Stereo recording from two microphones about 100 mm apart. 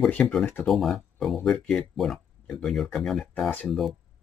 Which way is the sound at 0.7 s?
5° left (ahead or behind).